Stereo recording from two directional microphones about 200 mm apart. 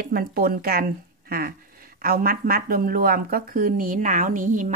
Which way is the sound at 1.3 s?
45° right (ahead or behind).